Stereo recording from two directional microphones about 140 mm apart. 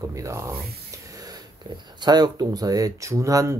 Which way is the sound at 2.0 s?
30° right (ahead or behind).